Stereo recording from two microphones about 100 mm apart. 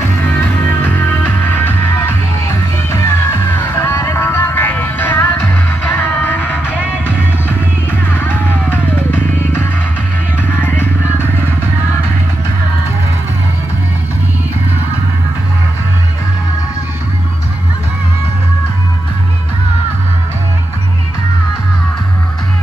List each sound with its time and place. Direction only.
0.8 s music: 20° left (ahead or behind)
8.1 s music: 20° left (ahead or behind)